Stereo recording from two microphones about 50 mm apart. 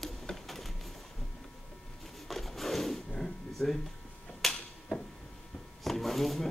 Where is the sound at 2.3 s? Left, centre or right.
Centre.